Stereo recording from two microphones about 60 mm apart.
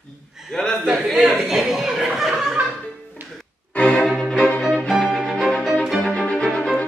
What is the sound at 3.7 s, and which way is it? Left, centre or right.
Music, left.